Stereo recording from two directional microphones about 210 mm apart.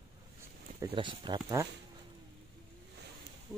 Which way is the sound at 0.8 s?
25° right (ahead or behind).